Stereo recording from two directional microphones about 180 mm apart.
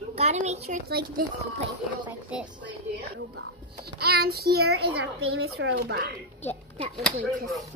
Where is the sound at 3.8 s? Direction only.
60° right (ahead or behind).